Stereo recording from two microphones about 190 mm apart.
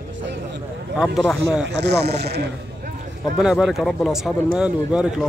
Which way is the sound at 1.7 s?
60° right (ahead or behind).